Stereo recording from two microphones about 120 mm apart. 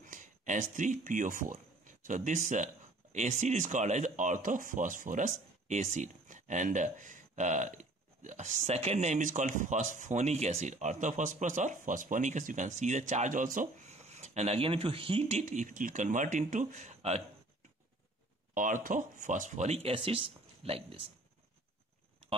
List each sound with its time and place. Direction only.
0.0 s speech: 90° right; by 17.2 s 65° right (ahead or behind)
18.5 s speech: 90° right; by 21.0 s 55° right (ahead or behind)